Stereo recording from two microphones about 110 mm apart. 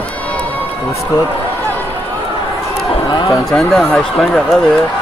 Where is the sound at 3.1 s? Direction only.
35° left (ahead or behind).